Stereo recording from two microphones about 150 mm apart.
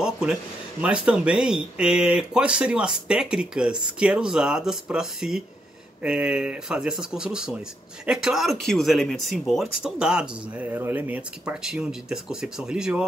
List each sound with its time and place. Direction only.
0.0 s speech: 5° right (ahead or behind)